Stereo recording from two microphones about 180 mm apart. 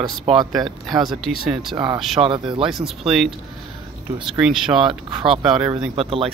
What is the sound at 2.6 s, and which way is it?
Speech, centre (ahead or behind).